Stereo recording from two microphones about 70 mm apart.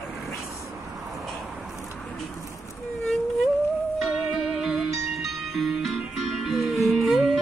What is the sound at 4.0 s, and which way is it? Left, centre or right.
Music, centre.